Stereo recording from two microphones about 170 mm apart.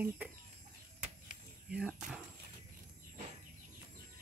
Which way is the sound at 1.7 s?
5° right (ahead or behind).